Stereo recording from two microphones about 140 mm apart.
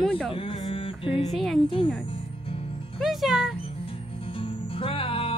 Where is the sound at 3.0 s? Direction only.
Centre (ahead or behind).